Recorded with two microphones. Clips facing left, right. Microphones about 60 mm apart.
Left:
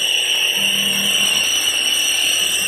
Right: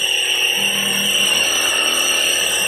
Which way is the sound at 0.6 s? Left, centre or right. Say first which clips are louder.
Even; right.